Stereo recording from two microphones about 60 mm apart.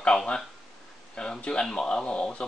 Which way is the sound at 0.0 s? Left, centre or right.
Centre.